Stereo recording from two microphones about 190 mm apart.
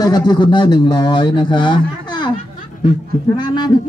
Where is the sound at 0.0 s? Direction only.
20° left (ahead or behind).